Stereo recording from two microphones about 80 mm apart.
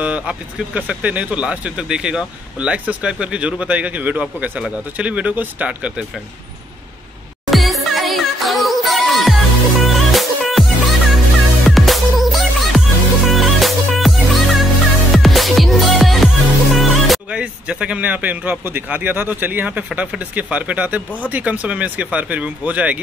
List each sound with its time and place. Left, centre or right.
0.0 s speech: centre
7.5 s music: centre
17.3 s speech: centre